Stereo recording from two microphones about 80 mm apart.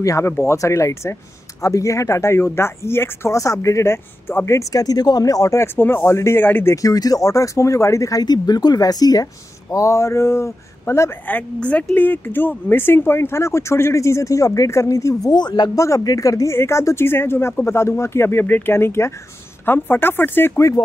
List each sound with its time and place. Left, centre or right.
0.0 s speech: left
4.6 s speech: left
5.8 s speech: left
6.7 s speech: left
11.2 s speech: centre; by 15.3 s left
15.3 s speech: left
16.0 s speech: left